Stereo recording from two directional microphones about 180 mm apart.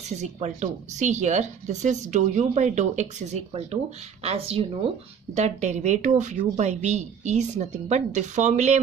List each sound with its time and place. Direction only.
0.1 s speech: 40° right (ahead or behind)